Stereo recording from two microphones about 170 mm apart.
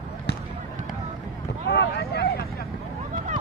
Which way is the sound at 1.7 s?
75° left (ahead or behind).